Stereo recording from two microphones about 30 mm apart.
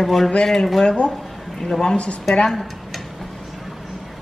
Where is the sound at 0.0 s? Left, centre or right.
Centre.